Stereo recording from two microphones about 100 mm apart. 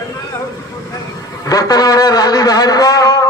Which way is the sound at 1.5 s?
40° left (ahead or behind).